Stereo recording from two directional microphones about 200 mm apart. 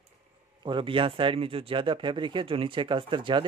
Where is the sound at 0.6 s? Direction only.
25° right (ahead or behind).